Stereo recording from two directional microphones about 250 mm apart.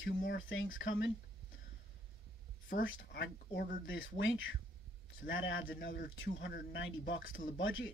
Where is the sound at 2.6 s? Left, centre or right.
Left.